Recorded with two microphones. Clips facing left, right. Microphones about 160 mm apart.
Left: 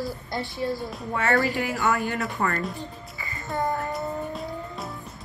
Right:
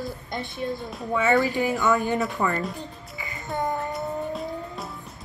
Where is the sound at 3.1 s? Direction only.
20° right (ahead or behind).